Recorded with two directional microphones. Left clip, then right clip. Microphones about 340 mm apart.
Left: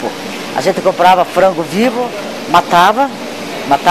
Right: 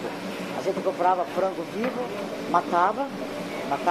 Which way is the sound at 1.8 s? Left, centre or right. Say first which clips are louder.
Left 13 dB; left.